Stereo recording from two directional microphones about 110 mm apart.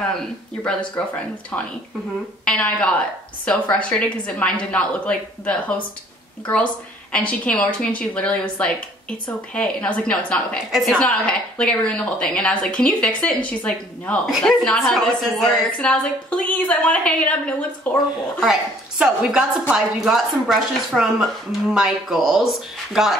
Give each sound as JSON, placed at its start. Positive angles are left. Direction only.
{"t": 2.4, "sound": "a woman's voice", "side_deg": 10}
{"t": 14.3, "sound": "a woman's voice", "side_deg": 0}
{"t": 18.4, "sound": "speech", "side_deg": -5}